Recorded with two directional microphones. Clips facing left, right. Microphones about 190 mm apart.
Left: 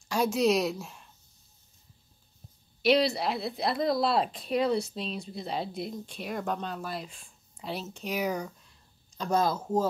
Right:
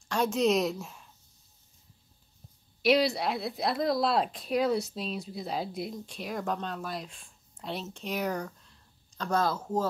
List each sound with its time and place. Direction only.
0.1 s a woman's voice: 5° left (ahead or behind)
2.8 s speech: centre (ahead or behind)
9.1 s speech: 15° left (ahead or behind)